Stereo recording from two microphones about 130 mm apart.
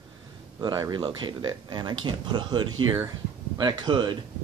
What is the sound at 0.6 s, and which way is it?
Speech, 35° right (ahead or behind).